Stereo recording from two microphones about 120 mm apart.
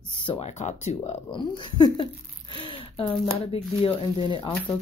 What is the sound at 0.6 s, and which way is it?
Speech, 65° left (ahead or behind).